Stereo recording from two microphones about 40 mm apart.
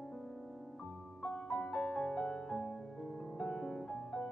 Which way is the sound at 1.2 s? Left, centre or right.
Centre.